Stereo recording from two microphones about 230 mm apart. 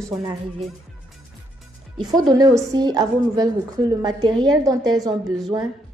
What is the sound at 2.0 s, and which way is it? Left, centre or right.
A woman's voice, centre.